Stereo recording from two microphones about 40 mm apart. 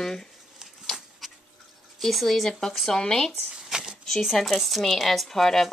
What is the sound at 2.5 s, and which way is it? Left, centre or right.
Speech, centre.